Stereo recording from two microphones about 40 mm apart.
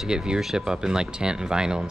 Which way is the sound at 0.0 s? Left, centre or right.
Centre.